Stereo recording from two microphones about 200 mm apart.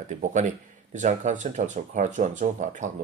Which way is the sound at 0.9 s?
35° right (ahead or behind).